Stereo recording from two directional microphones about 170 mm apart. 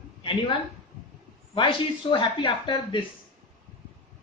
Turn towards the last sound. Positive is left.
turn(degrees=30)  # may be behind; listen again after turning